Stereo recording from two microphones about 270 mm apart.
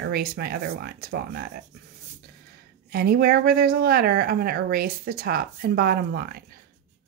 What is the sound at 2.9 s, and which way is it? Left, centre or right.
Speech, right.